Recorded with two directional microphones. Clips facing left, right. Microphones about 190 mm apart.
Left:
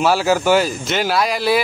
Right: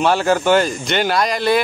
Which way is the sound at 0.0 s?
5° left (ahead or behind).